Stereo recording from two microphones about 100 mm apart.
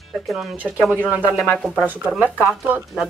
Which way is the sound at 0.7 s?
5° left (ahead or behind).